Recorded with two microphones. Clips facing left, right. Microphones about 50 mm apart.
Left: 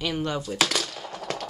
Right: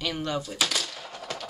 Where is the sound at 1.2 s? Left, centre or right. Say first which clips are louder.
Left 4 dB; centre.